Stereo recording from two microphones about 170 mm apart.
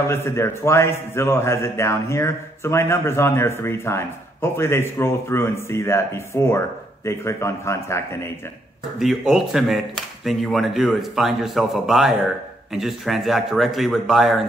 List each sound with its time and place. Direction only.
0.1 s a man's voice: 15° left (ahead or behind)
9.0 s speech: centre (ahead or behind)